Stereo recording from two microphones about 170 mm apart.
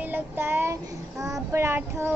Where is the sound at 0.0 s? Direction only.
10° right (ahead or behind).